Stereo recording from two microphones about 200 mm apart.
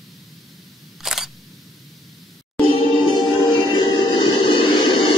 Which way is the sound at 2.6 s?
25° left (ahead or behind).